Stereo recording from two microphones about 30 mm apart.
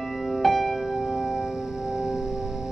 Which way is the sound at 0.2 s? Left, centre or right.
Centre.